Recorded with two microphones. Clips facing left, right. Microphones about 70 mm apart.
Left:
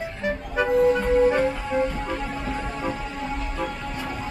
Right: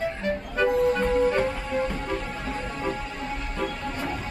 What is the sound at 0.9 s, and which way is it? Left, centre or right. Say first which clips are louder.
Music: left 3 dB; centre.